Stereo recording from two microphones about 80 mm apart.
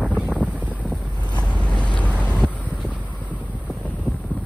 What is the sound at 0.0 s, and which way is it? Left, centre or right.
Boat, centre.